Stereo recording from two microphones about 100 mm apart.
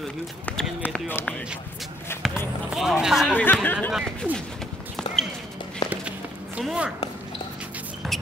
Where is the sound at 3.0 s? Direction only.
5° right (ahead or behind).